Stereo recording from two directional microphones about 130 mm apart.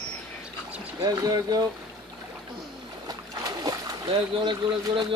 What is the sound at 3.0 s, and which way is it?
Speech, 30° right (ahead or behind).